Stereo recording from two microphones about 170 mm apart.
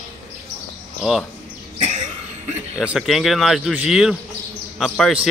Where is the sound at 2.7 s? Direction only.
5° right (ahead or behind).